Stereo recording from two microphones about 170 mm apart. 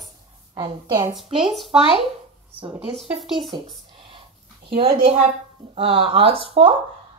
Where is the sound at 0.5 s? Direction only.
25° right (ahead or behind).